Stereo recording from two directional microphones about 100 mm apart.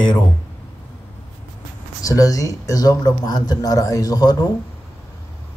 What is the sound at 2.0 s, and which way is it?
Speech, 35° left (ahead or behind).